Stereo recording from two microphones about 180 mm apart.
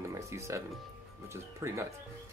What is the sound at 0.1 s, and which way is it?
Speech, 15° right (ahead or behind).